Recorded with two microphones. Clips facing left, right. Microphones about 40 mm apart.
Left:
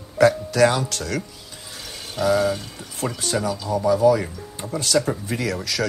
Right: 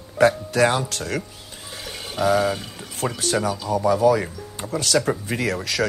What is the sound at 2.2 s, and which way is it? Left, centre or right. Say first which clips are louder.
Speech: even; right.